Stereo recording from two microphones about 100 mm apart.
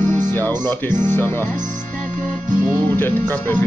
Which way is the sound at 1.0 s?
20° left (ahead or behind).